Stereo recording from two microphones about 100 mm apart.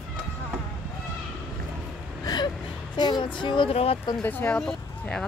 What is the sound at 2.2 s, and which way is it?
Gasp, 45° left (ahead or behind).